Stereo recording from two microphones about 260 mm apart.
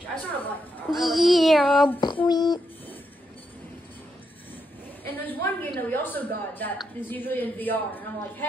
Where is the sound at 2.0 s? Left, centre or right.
Centre.